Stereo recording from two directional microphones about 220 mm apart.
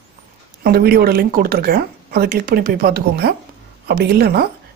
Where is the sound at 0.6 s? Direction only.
45° right (ahead or behind).